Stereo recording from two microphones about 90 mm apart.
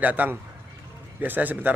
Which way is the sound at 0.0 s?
20° right (ahead or behind).